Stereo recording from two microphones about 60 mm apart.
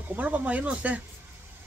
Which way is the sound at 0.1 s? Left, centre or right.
Right.